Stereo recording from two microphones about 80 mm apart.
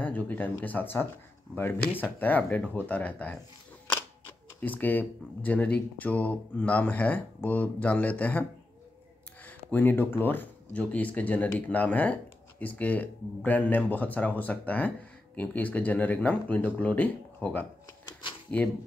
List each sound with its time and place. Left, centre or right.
0.0 s speech: left